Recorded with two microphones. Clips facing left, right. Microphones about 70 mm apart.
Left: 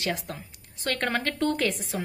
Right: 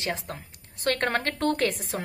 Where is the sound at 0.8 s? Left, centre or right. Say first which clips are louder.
Right 2 dB; right.